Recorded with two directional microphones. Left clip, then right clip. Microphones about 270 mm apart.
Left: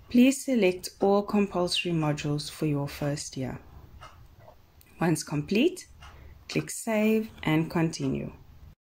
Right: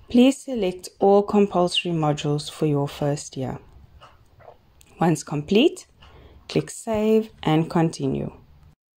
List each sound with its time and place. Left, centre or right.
0.1 s speech: right
4.9 s speech: right